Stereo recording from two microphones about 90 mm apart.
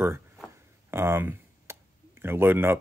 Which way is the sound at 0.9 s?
25° right (ahead or behind).